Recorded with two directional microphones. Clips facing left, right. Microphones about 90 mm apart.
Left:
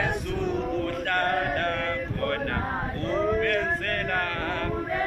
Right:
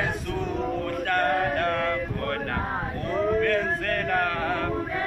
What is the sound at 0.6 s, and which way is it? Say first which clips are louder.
Chant: right 1 dB; 15° right (ahead or behind).